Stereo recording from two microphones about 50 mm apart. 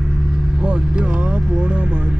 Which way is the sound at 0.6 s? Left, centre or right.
Centre.